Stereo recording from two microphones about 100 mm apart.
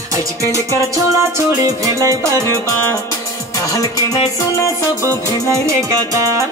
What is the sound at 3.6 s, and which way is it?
Music, 35° left (ahead or behind).